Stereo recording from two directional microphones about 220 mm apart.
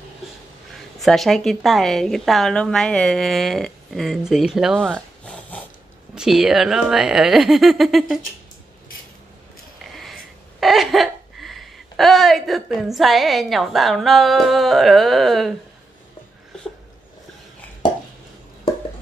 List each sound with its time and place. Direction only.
0.9 s a woman's voice: centre (ahead or behind)
10.6 s speech: centre (ahead or behind)